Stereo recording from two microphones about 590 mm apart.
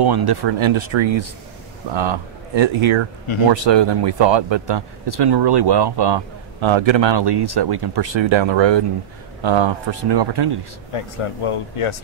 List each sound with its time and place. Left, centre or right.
0.0 s a man's voice: right
10.9 s speech: left